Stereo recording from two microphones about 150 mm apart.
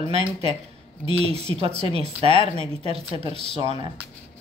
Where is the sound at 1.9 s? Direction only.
40° right (ahead or behind).